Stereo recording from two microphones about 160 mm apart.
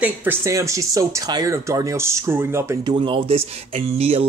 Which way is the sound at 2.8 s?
30° right (ahead or behind).